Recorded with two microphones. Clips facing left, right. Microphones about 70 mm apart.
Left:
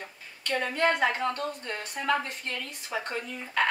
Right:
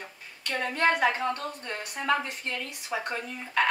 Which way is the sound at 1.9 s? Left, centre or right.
Centre.